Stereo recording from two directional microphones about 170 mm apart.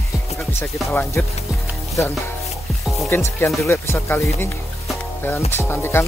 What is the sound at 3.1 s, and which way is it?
Speech, 15° left (ahead or behind).